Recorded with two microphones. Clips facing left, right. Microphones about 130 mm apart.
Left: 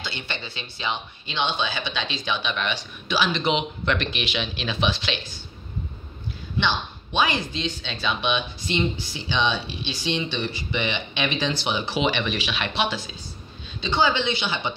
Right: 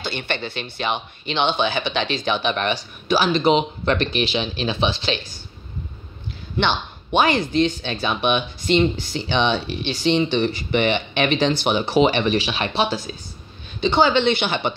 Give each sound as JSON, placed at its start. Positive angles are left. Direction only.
{"t": 0.0, "sound": "speech", "side_deg": -55}
{"t": 6.6, "sound": "speech", "side_deg": -55}
{"t": 13.7, "sound": "speech", "side_deg": -60}